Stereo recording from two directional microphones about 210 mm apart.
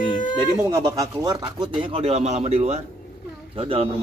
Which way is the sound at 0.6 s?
15° right (ahead or behind).